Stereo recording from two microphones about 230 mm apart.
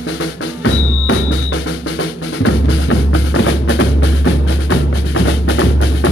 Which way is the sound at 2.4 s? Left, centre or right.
Left.